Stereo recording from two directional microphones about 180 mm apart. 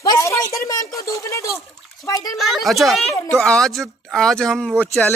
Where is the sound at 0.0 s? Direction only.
20° left (ahead or behind).